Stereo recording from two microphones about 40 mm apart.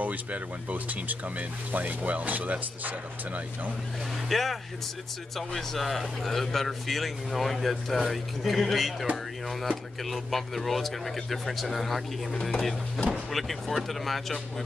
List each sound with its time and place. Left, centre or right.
0.0 s speech: right
4.3 s a man's voice: centre
10.0 s a man's voice: centre